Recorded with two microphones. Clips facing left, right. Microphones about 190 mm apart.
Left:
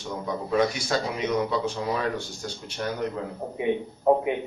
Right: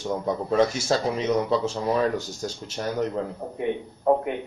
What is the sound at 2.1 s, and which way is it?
Speech, 40° right (ahead or behind).